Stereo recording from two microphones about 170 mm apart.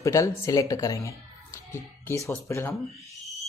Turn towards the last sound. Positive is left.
turn(degrees=0)  # may be behind; listen again after turning